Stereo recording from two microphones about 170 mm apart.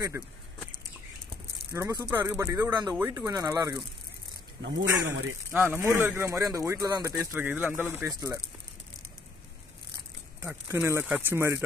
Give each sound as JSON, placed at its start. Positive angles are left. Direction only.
{"t": 0.2, "sound": "speech", "side_deg": -15}
{"t": 1.7, "sound": "speech", "side_deg": -20}
{"t": 5.0, "sound": "speech", "side_deg": -10}
{"t": 10.4, "sound": "speech", "side_deg": -10}